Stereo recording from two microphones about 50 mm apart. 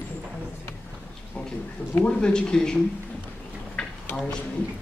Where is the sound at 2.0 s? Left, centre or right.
Centre.